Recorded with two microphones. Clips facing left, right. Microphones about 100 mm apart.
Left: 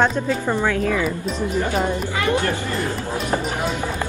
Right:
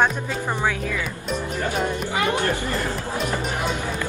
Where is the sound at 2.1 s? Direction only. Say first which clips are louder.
Left 1 dB; 20° right (ahead or behind).